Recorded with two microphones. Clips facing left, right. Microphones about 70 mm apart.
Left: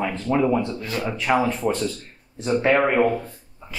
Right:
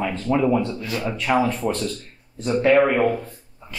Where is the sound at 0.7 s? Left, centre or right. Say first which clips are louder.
Even; left.